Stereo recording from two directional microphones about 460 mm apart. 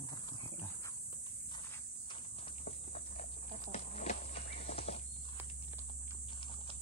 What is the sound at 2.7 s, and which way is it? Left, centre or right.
Horse, centre.